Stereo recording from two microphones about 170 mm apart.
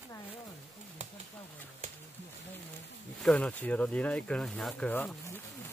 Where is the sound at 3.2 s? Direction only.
5° left (ahead or behind).